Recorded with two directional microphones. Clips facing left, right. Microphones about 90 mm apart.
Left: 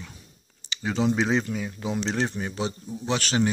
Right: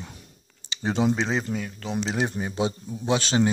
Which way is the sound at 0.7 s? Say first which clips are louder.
Right 2 dB; 25° right (ahead or behind).